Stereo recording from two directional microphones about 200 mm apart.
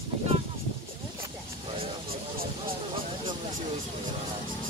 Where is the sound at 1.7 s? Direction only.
30° right (ahead or behind).